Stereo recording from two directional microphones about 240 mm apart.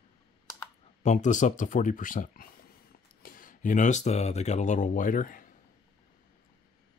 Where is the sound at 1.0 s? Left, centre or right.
Left.